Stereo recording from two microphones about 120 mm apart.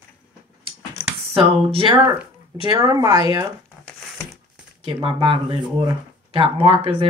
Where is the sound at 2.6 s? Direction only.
35° right (ahead or behind).